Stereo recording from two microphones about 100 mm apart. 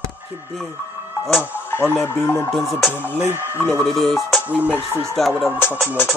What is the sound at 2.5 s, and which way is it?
Music, centre (ahead or behind).